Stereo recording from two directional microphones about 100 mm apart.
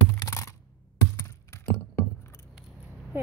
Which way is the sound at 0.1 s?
30° left (ahead or behind).